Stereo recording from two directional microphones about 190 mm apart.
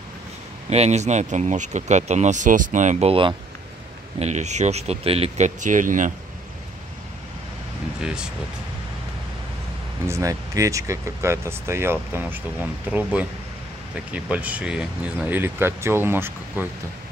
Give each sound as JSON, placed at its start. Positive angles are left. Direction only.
{"t": 0.7, "sound": "speech", "side_deg": -35}
{"t": 8.0, "sound": "speech", "side_deg": -5}
{"t": 10.0, "sound": "speech", "side_deg": -15}